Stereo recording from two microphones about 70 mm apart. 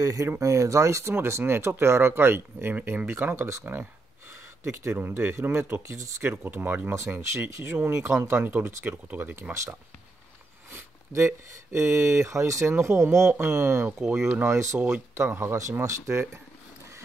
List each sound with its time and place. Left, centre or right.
0.0 s speech: right
1.1 s speech: right
4.6 s speech: right
10.7 s speech: right
14.0 s speech: centre
14.5 s speech: right